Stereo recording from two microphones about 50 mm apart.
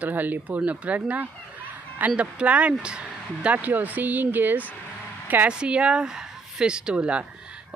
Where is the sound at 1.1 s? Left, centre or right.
Right.